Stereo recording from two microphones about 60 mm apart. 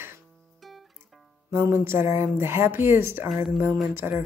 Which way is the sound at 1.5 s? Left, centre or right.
Right.